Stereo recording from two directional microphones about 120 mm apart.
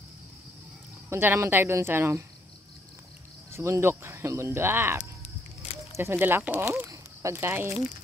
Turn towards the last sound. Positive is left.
turn(degrees=-20)  # may be behind; listen again after turning